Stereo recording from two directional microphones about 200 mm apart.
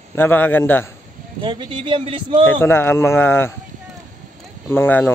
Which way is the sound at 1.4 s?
25° right (ahead or behind).